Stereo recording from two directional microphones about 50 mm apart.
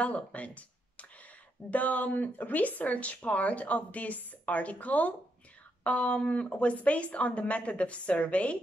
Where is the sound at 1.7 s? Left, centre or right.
Left.